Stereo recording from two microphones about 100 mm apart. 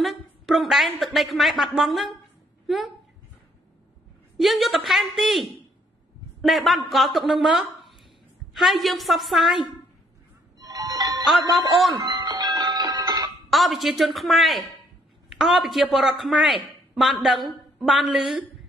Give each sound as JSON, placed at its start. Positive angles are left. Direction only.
{"t": 0.0, "sound": "a woman's voice", "side_deg": 0}
{"t": 4.4, "sound": "a woman's voice", "side_deg": 0}
{"t": 10.6, "sound": "music", "side_deg": -35}
{"t": 11.5, "sound": "a woman's voice", "side_deg": 0}
{"t": 11.9, "sound": "doorbell", "side_deg": -40}
{"t": 13.5, "sound": "a woman's voice", "side_deg": 0}